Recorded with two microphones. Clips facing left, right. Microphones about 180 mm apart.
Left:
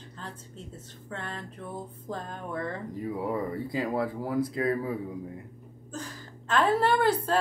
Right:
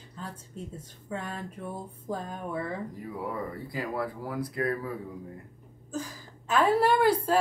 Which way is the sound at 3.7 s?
25° left (ahead or behind).